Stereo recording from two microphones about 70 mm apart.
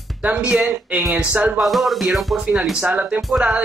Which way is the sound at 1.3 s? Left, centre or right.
Right.